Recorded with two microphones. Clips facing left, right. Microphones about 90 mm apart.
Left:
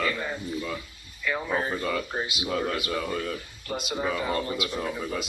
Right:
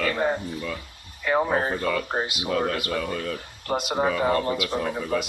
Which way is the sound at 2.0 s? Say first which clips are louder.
Right 3 dB; 50° right (ahead or behind).